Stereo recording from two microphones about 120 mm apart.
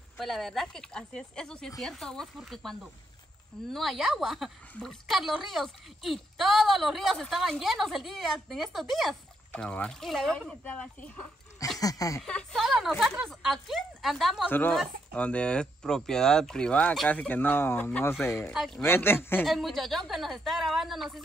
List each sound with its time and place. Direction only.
0.2 s speech: centre (ahead or behind)
11.8 s speech: 30° left (ahead or behind)
12.2 s speech: 5° left (ahead or behind)
14.5 s speech: 15° left (ahead or behind)
19.4 s speech: centre (ahead or behind)